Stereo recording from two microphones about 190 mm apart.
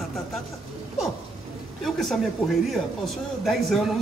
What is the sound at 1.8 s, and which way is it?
A man's voice, centre (ahead or behind).